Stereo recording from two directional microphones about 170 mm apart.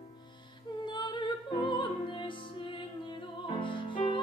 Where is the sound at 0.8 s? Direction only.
25° left (ahead or behind).